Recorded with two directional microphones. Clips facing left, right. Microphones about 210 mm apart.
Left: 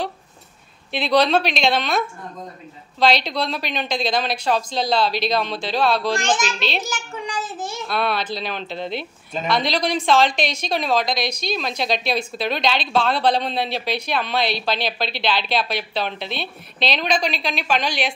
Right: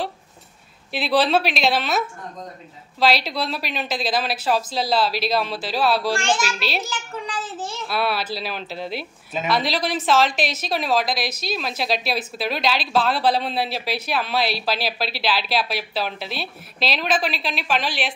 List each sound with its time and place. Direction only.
0.9 s speech: 5° right (ahead or behind)
6.1 s a child's voice: 15° left (ahead or behind)
7.9 s speech: 5° right (ahead or behind)